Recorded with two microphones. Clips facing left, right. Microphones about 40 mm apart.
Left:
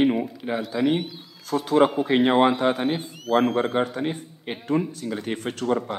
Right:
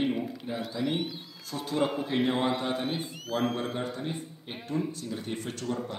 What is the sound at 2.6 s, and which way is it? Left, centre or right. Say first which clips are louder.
Speech: left 9 dB; left.